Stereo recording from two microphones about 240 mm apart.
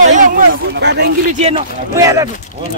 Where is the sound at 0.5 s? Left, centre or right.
Right.